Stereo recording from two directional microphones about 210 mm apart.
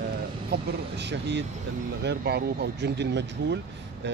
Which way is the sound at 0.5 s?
55° right (ahead or behind).